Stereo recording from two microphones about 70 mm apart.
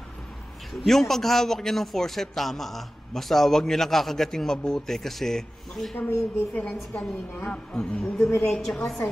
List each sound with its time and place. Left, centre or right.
0.8 s a man's voice: centre
5.9 s a woman's voice: left
6.6 s a woman's voice: centre